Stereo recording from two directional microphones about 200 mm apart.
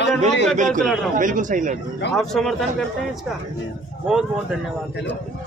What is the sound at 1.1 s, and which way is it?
Speech, 40° right (ahead or behind).